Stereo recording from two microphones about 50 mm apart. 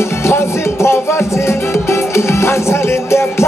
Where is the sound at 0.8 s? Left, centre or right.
Left.